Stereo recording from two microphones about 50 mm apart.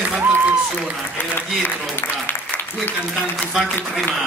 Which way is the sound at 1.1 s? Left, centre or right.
Left.